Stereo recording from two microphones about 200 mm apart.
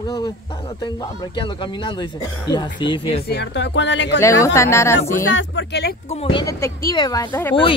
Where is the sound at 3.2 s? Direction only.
55° left (ahead or behind).